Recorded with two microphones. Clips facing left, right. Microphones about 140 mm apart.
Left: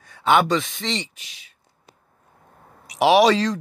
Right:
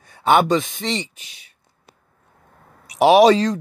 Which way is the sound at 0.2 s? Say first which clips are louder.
Right 2 dB; 40° right (ahead or behind).